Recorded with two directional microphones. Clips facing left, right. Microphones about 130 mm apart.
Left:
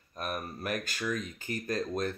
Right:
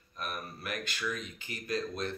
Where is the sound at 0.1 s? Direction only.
45° left (ahead or behind).